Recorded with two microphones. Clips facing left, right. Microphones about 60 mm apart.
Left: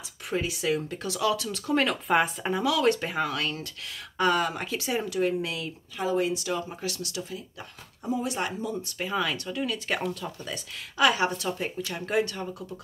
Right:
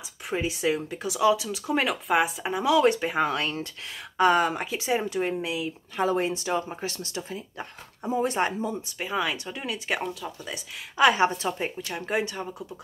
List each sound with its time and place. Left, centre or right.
0.3 s speech: right; by 2.6 s centre
2.6 s speech: right
5.9 s speech: right
8.9 s speech: centre
11.0 s speech: right